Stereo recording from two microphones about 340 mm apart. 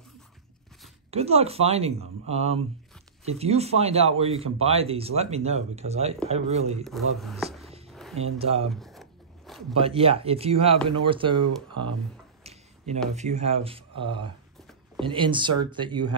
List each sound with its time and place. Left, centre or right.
1.1 s speech: centre
6.8 s a man's voice: centre
7.9 s a sound: centre
8.2 s speech: centre
8.7 s zipper: centre
9.8 s speech: centre
12.4 s tick-tock: centre
13.1 s speech: centre